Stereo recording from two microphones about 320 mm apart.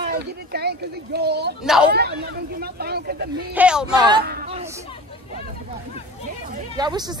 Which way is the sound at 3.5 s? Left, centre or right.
Centre.